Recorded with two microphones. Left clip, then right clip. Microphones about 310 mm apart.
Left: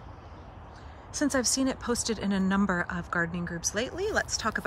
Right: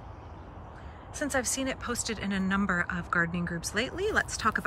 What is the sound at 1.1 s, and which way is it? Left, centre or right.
Speech, centre.